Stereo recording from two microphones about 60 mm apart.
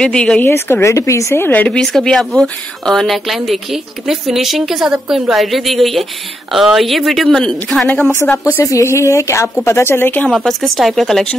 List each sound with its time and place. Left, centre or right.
0.0 s speech: centre
0.4 s speech: left
1.3 s speech: left
1.7 s speech: centre
8.3 s speech: left
8.8 s speech: left
9.7 s speech: left
10.3 s speech: centre